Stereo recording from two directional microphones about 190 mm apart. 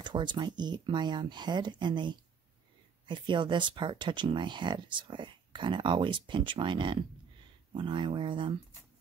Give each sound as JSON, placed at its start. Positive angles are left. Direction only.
{"t": 0.0, "sound": "speech", "side_deg": -25}